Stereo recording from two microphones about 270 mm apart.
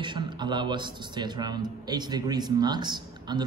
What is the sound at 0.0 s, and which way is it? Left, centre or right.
A man's voice, centre.